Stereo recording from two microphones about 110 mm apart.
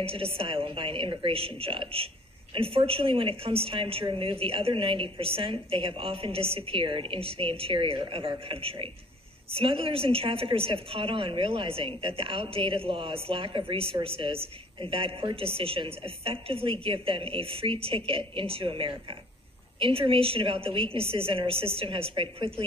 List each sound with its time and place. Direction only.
0.0 s a woman's voice: 60° right (ahead or behind)